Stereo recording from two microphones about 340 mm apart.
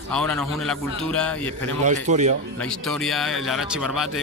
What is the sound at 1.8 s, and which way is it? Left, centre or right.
Speech, right.